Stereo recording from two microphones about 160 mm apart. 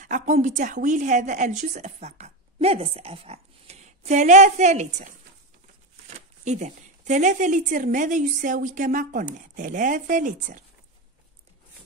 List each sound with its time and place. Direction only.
0.0 s a woman's voice: 50° right (ahead or behind)
6.4 s a woman's voice: 45° right (ahead or behind)